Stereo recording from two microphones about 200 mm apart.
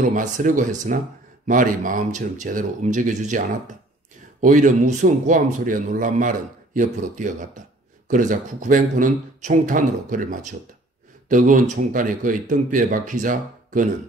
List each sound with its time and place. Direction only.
0.1 s speech: 40° right (ahead or behind)